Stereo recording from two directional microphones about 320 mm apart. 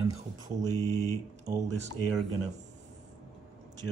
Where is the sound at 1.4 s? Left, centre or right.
Centre.